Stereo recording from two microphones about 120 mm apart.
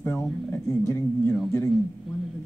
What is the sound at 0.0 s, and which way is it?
Speech, 20° left (ahead or behind).